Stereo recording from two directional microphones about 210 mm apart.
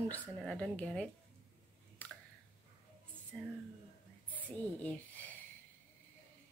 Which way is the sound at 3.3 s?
5° left (ahead or behind).